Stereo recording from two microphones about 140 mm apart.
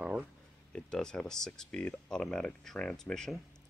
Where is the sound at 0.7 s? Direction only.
5° left (ahead or behind).